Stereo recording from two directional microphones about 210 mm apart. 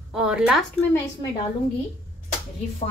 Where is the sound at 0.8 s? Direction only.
10° left (ahead or behind).